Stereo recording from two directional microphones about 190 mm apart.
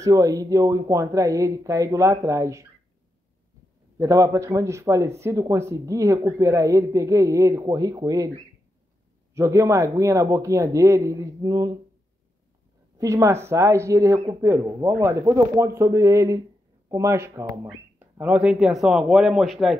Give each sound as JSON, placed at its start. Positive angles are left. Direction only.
{"t": 0.0, "sound": "speech", "side_deg": -15}
{"t": 4.0, "sound": "speech", "side_deg": -15}
{"t": 9.3, "sound": "speech", "side_deg": -15}
{"t": 12.9, "sound": "speech", "side_deg": -15}